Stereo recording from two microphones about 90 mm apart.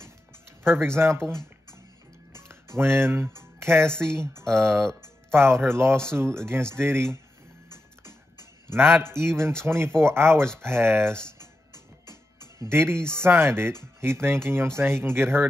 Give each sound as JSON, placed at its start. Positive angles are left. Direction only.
{"t": 0.7, "sound": "speech", "side_deg": -25}
{"t": 2.3, "sound": "music", "side_deg": -30}
{"t": 3.8, "sound": "speech", "side_deg": 5}
{"t": 5.0, "sound": "speech", "side_deg": -30}
{"t": 7.7, "sound": "typing", "side_deg": -30}
{"t": 9.0, "sound": "speech", "side_deg": -25}
{"t": 11.3, "sound": "music", "side_deg": -30}
{"t": 15.0, "sound": "speech", "side_deg": -25}